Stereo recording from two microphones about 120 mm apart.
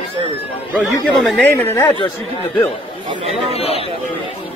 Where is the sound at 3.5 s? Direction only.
55° left (ahead or behind).